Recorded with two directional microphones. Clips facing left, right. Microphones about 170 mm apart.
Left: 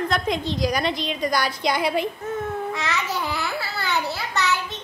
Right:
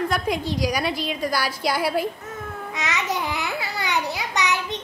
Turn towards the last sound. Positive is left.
turn(degrees=-15)  # may be behind; listen again after turning